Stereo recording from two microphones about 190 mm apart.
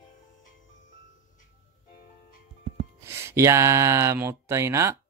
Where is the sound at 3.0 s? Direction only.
15° right (ahead or behind).